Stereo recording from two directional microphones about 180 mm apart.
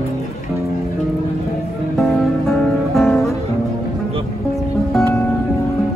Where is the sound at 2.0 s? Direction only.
Centre (ahead or behind).